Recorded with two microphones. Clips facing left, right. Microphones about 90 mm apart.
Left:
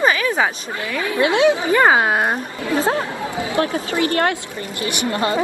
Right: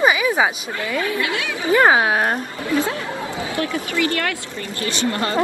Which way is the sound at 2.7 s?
30° left (ahead or behind).